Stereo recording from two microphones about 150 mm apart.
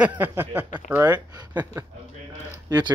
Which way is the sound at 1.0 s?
25° right (ahead or behind).